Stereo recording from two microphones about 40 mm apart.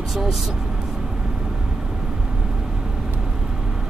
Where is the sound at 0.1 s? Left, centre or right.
Centre.